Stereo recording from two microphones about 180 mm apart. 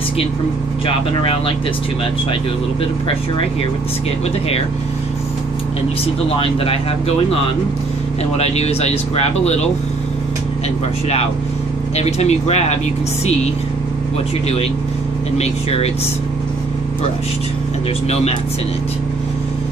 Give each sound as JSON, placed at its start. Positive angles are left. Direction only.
{"t": 0.8, "sound": "speech", "side_deg": 30}
{"t": 6.3, "sound": "speech", "side_deg": 30}
{"t": 12.0, "sound": "speech", "side_deg": 40}
{"t": 15.3, "sound": "speech", "side_deg": 35}